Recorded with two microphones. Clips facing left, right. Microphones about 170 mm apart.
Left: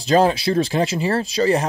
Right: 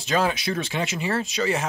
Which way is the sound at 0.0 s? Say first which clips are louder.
Left 7 dB; 35° left (ahead or behind).